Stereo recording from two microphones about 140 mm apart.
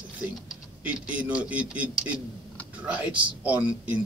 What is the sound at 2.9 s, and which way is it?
Speech, 10° right (ahead or behind).